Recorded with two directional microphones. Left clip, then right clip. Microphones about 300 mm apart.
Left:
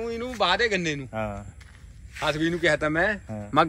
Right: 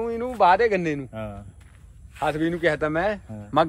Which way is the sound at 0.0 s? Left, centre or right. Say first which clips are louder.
Right 6 dB; centre.